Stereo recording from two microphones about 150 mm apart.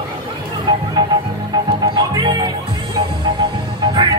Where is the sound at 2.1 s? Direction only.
30° right (ahead or behind).